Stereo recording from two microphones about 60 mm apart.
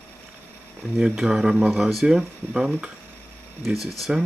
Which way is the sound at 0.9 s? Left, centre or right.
Centre.